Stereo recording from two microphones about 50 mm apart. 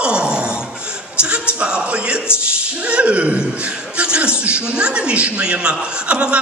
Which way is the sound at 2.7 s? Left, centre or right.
Right.